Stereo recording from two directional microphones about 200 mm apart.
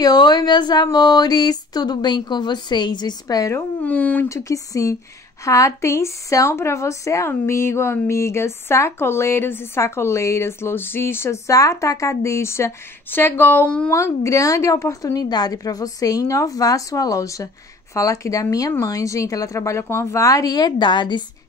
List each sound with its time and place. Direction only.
0.0 s a woman's voice: 20° left (ahead or behind)